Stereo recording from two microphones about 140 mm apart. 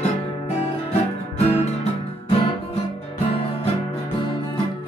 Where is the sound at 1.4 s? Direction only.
50° left (ahead or behind); by 4.6 s 35° left (ahead or behind).